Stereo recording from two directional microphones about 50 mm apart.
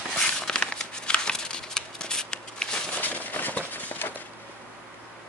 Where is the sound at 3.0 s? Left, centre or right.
Left.